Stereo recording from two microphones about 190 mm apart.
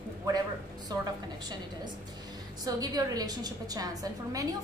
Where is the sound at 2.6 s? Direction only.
20° right (ahead or behind).